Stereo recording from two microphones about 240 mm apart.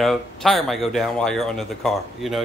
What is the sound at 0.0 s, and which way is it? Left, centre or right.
Speech, centre.